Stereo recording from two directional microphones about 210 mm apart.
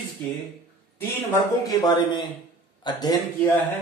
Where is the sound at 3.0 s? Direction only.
10° left (ahead or behind).